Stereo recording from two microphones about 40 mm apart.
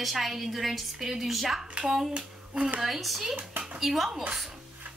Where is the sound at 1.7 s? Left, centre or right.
Centre.